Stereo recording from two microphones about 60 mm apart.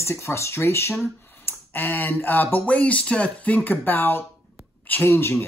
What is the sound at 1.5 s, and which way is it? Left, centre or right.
Speech, left.